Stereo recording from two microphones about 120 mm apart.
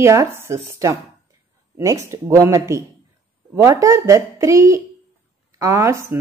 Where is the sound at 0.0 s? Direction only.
25° right (ahead or behind).